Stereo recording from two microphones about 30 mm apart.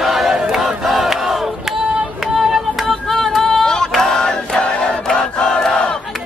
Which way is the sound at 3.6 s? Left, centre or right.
Left.